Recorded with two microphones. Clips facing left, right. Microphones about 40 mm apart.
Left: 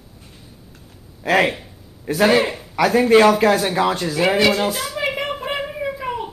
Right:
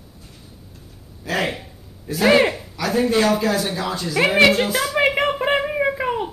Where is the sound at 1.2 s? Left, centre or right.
Left.